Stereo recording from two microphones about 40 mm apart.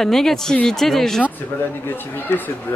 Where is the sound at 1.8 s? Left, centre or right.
Left.